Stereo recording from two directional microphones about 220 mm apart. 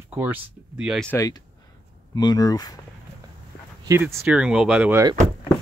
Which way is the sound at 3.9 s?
5° right (ahead or behind).